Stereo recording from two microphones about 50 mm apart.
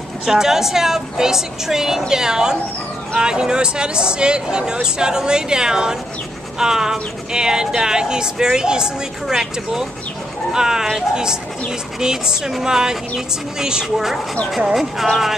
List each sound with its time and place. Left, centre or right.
0.2 s speech: centre